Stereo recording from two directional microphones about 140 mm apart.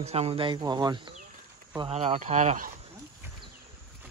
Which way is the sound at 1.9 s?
50° right (ahead or behind).